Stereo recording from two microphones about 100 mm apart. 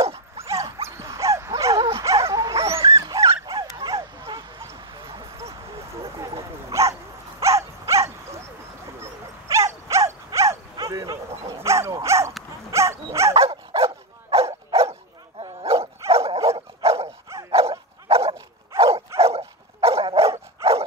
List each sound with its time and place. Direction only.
0.0 s dog: 80° right
0.8 s dog: 30° right (ahead or behind)
4.9 s a sound: 45° right (ahead or behind)
6.7 s dog: 30° right (ahead or behind)
13.3 s dog: 70° right (ahead or behind)
19.1 s dog: 80° right